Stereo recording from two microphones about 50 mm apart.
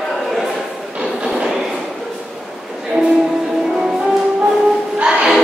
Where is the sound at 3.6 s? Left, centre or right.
Centre.